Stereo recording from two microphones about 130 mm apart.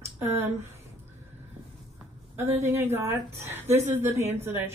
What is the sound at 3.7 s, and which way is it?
Speech, 65° right (ahead or behind).